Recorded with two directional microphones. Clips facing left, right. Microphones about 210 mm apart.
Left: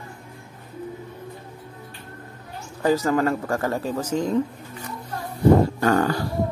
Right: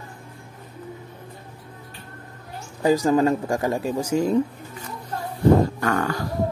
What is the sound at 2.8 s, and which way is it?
Speech, 15° right (ahead or behind).